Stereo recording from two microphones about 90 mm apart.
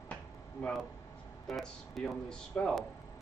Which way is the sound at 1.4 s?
5° left (ahead or behind).